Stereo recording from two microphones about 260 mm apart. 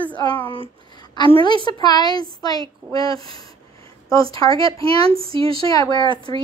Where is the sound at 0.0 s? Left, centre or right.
Centre.